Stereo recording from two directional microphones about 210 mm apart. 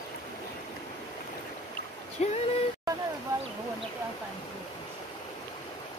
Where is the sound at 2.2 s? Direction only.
30° left (ahead or behind).